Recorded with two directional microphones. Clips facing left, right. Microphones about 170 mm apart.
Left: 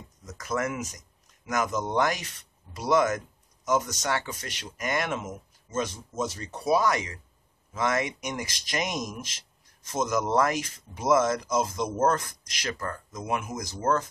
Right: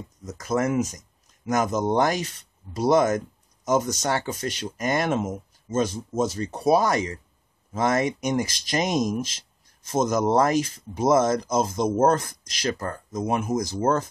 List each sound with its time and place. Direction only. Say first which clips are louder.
0.3 s speech: right 6 dB; 35° right (ahead or behind)